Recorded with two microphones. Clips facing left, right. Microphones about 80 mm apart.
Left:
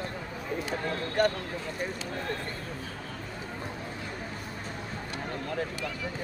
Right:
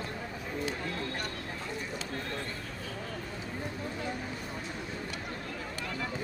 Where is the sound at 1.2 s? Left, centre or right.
Left.